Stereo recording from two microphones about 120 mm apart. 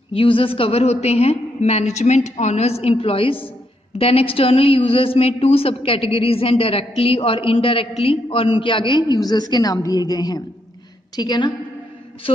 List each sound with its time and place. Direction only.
0.1 s a woman's voice: 50° left (ahead or behind)